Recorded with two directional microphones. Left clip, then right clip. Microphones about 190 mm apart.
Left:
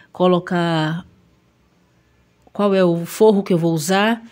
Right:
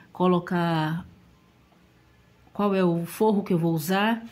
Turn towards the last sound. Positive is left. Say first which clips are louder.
# left 7 dB
turn(degrees=50)  # may be behind; listen again after turning